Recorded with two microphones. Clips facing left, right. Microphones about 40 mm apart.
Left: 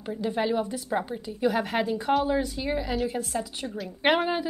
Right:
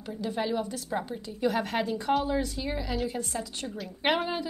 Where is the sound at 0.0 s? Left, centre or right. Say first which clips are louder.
Left 4 dB; centre.